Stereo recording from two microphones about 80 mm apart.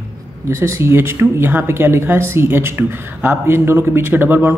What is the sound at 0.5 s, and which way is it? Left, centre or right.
Speech, right.